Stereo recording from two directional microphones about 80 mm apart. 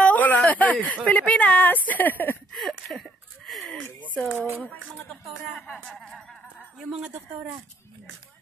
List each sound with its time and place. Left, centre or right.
0.0 s a sound: centre
0.5 s speech: centre
2.5 s a sound: centre
4.1 s speech: centre
5.9 s speech: centre
6.8 s speech: centre